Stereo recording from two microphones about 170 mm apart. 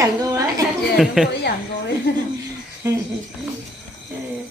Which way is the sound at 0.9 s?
Centre (ahead or behind).